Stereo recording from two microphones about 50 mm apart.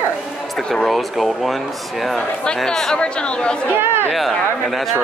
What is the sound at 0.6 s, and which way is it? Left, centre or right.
Speech, centre.